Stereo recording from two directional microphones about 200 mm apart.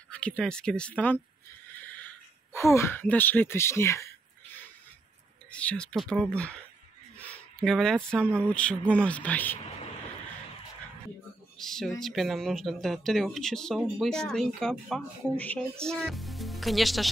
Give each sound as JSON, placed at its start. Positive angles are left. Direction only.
{"t": 0.1, "sound": "speech", "side_deg": 5}
{"t": 5.5, "sound": "speech", "side_deg": 5}
{"t": 11.5, "sound": "speech", "side_deg": 0}